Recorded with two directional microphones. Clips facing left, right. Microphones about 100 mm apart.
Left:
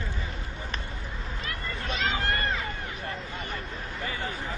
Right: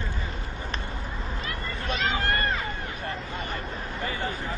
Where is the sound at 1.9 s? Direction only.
50° right (ahead or behind).